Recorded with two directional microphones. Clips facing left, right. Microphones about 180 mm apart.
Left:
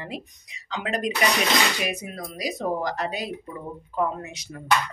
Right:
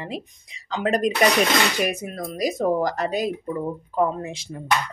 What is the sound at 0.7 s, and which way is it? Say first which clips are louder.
Speech: right 5 dB; 45° right (ahead or behind).